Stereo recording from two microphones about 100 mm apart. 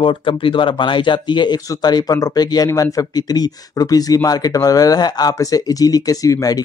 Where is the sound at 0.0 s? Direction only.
55° left (ahead or behind).